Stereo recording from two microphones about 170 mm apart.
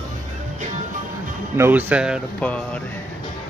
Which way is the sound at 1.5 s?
15° right (ahead or behind).